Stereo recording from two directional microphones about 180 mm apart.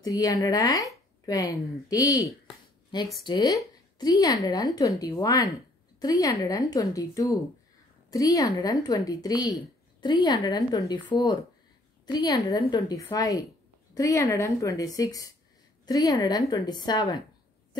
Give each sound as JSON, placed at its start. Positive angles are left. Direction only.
{"t": 0.0, "sound": "a woman's voice", "side_deg": 20}